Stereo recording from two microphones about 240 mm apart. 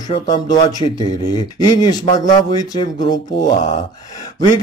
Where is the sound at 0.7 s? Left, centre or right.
Centre.